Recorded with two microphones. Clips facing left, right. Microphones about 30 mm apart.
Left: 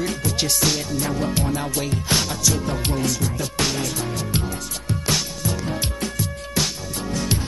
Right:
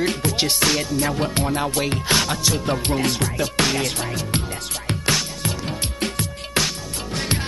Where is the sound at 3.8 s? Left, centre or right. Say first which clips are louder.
Right 2 dB; right.